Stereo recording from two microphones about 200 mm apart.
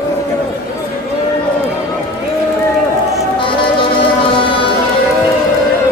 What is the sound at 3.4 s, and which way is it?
Music, 25° left (ahead or behind).